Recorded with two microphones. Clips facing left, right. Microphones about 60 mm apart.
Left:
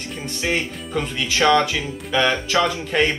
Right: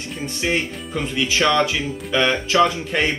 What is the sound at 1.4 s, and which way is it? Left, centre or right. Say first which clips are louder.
Speech: left 2 dB; left.